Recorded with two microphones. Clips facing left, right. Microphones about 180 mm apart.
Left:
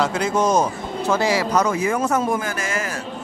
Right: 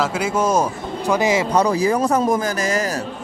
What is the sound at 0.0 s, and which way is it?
Speech, 5° right (ahead or behind).